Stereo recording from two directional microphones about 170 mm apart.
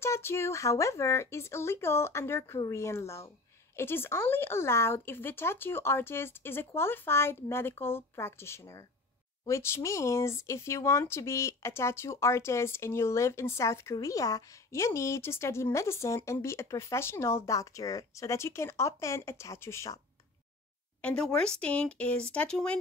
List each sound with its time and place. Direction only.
0.0 s speech: 15° left (ahead or behind)
21.0 s speech: 5° left (ahead or behind)